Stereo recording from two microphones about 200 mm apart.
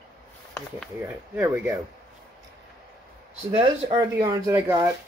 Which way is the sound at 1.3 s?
10° right (ahead or behind).